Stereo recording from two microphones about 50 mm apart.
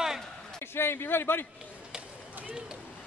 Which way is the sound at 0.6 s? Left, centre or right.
Left.